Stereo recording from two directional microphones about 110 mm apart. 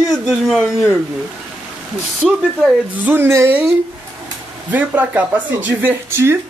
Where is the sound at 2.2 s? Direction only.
10° right (ahead or behind).